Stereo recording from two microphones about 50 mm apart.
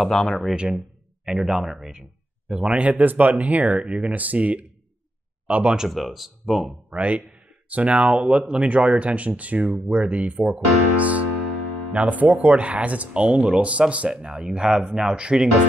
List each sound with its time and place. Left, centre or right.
0.1 s speech: centre
1.2 s speech: centre
5.8 s speech: centre
6.9 s speech: right